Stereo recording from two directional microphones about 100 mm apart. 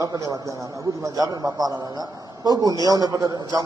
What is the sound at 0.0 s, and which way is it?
A man's voice, 35° right (ahead or behind).